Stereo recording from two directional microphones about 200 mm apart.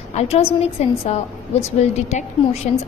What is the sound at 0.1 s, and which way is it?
A woman's voice, 30° left (ahead or behind).